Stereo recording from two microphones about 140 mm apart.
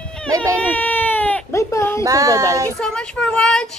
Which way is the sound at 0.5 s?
10° left (ahead or behind).